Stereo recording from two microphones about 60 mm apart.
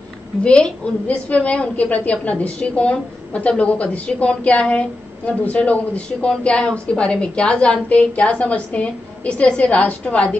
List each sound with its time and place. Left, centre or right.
0.4 s a woman's voice: centre